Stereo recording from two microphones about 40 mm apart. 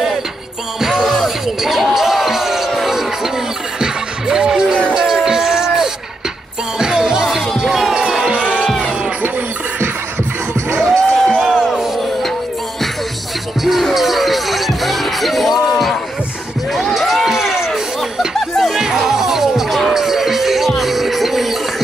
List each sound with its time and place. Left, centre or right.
0.7 s music: centre
2.0 s a sound: centre
3.8 s music: centre
4.9 s a sound: centre
6.8 s music: centre
7.6 s crowd: centre
7.9 s basketball bounce: right
8.4 s music: right
10.8 s music: centre
13.7 s music: centre
16.9 s a sound: centre
19.9 s music: centre